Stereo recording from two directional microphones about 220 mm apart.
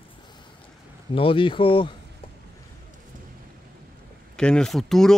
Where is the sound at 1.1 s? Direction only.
25° left (ahead or behind).